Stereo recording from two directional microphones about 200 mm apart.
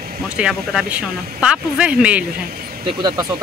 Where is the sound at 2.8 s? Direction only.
20° right (ahead or behind).